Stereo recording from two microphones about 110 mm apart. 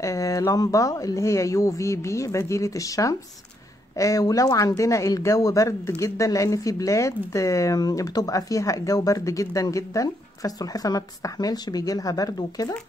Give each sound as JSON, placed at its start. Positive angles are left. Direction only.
{"t": 0.0, "sound": "speech", "side_deg": 30}